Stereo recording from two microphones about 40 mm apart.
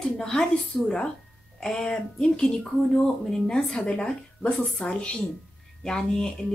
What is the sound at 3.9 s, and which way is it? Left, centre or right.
A woman's voice, left.